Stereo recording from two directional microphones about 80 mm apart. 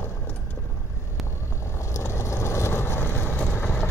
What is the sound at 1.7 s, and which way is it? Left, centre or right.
Vehicle, left.